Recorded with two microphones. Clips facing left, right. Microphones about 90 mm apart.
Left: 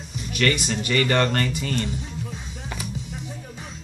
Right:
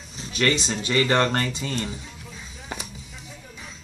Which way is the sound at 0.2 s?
25° right (ahead or behind).